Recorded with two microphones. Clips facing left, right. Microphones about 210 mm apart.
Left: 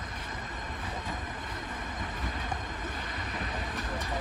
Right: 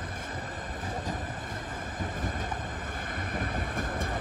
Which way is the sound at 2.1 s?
45° right (ahead or behind).